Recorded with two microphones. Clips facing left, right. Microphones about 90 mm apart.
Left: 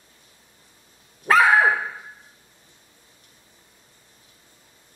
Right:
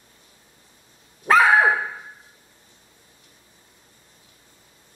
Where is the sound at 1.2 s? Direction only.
Centre (ahead or behind).